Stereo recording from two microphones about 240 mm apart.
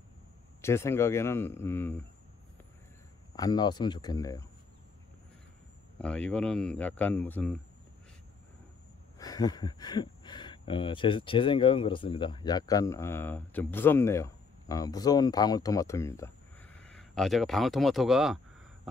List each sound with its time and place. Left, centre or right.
0.6 s a man's voice: centre
3.3 s a man's voice: centre
5.9 s speech: centre
9.2 s speech: centre